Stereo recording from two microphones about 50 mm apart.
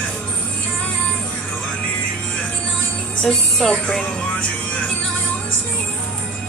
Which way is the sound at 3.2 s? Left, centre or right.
Centre.